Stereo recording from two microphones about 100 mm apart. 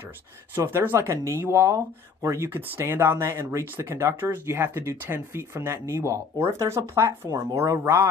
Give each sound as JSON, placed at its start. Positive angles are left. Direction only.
{"t": 0.6, "sound": "speech", "side_deg": -20}